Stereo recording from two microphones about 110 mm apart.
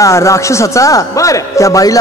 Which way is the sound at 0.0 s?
25° left (ahead or behind).